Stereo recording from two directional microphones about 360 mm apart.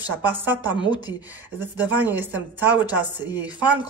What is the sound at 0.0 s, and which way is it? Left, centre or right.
Chopping, centre.